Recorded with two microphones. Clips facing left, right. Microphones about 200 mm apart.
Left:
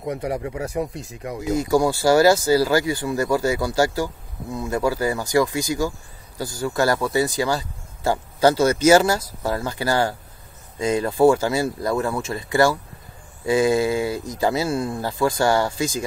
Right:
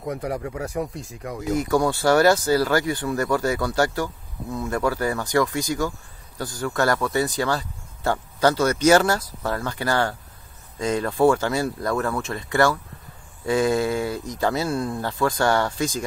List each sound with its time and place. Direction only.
0.0 s speech: 20° left (ahead or behind); by 16.0 s 5° left (ahead or behind)